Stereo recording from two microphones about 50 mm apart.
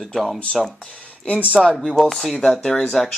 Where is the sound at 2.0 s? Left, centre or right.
Centre.